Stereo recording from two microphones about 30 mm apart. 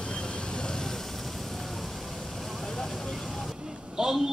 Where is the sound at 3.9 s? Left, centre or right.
Centre.